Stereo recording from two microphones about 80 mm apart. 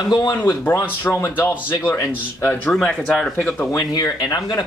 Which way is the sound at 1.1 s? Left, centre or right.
Left.